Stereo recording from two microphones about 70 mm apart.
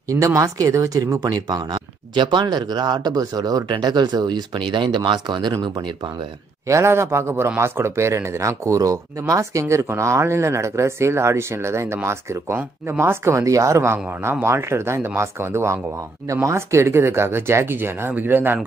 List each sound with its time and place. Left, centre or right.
0.1 s speech: right
1.3 s speech: right
6.7 s speech: right